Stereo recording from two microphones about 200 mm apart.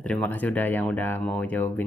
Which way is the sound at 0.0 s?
10° left (ahead or behind).